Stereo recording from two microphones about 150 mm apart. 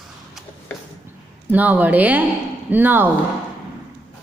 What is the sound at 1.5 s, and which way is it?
A woman's voice, 10° right (ahead or behind).